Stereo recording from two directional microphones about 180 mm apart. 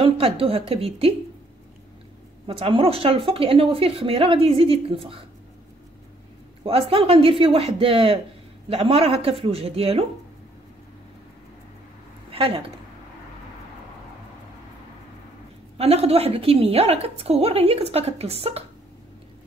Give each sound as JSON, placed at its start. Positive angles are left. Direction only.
{"t": 0.0, "sound": "a woman's voice", "side_deg": -30}
{"t": 2.4, "sound": "a woman's voice", "side_deg": -30}
{"t": 6.6, "sound": "a woman's voice", "side_deg": -30}
{"t": 12.3, "sound": "speech", "side_deg": -30}
{"t": 15.8, "sound": "a woman's voice", "side_deg": -35}